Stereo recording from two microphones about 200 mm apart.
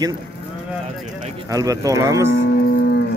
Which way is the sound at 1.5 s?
15° right (ahead or behind).